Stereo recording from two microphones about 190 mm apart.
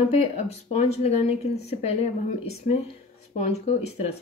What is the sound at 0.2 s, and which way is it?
Speech, 35° left (ahead or behind).